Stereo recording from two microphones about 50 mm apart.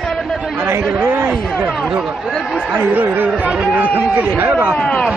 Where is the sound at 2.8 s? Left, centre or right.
Right.